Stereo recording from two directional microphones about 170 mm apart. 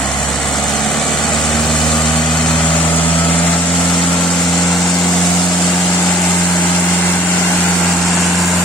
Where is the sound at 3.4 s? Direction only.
5° left (ahead or behind).